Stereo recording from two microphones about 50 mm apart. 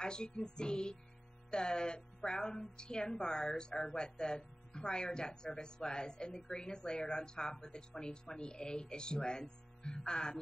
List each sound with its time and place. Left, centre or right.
0.0 s speech: centre